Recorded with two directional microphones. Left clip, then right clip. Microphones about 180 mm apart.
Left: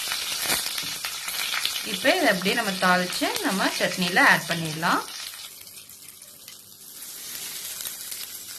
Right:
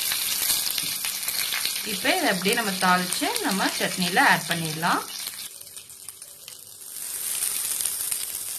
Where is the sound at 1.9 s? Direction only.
Centre (ahead or behind).